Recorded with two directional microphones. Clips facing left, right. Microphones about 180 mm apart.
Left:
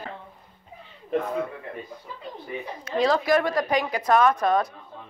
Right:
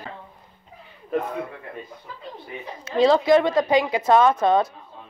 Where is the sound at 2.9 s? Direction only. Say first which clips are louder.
Right 5 dB; 25° right (ahead or behind).